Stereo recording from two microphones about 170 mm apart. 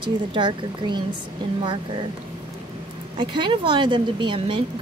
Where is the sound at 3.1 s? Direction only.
30° right (ahead or behind).